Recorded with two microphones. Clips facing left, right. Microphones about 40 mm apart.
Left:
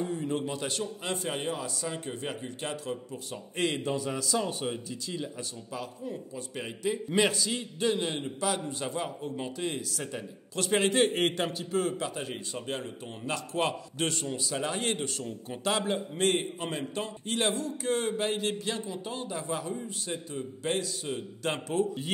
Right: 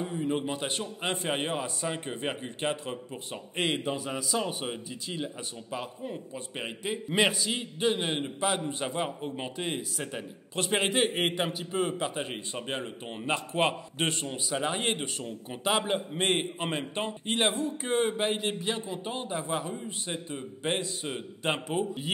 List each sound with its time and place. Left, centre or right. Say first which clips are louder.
0.0 s a sound: right 1 dB; centre
0.5 s a man's voice: even; right
16.2 s a man's voice: left 2 dB; right